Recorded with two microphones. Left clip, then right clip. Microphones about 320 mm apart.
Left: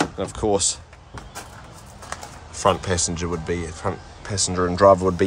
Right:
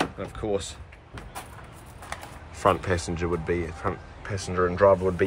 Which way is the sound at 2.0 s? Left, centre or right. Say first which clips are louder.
Left 3 dB; centre.